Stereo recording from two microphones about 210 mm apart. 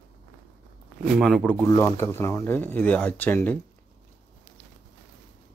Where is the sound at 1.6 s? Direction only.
15° left (ahead or behind).